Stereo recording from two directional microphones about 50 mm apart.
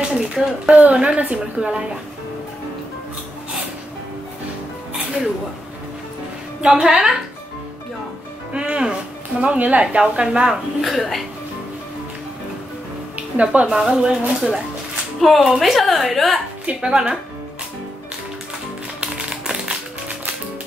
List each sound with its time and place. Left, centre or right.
0.1 s speech: centre
0.7 s a woman's voice: right
6.6 s a woman's voice: centre
8.5 s a woman's voice: centre
11.0 s a woman's voice: centre
13.4 s a woman's voice: right
15.1 s a woman's voice: centre
16.6 s a woman's voice: right
19.2 s a sound: centre